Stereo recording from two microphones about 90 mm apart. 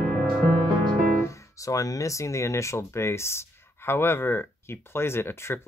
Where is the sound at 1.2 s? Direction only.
35° left (ahead or behind).